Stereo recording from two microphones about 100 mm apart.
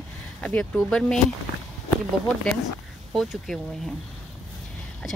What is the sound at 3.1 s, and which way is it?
Speech, centre (ahead or behind).